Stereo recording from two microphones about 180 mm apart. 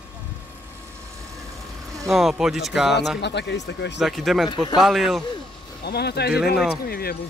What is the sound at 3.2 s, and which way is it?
Speech, 75° left (ahead or behind).